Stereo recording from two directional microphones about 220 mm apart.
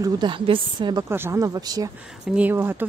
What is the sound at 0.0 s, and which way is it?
A woman's voice, 20° right (ahead or behind).